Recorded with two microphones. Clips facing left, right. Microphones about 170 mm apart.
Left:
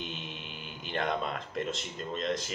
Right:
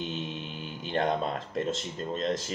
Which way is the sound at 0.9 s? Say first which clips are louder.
Right 4 dB; 25° right (ahead or behind).